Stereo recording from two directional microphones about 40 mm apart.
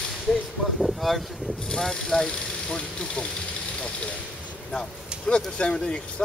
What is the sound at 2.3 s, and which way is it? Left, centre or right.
Speech, left.